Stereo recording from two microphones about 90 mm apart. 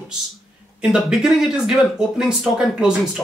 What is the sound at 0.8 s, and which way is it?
Speech, 5° right (ahead or behind).